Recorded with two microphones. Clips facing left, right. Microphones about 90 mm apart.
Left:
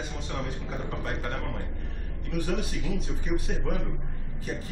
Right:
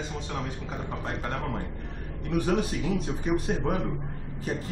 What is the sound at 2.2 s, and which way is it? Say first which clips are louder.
A man's voice: right 5 dB; 40° right (ahead or behind).